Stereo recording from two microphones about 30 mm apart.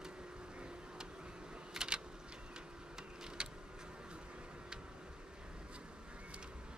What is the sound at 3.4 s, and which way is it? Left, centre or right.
Vehicle, right.